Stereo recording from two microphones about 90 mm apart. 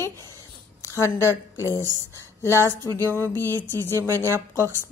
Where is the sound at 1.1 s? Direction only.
35° left (ahead or behind).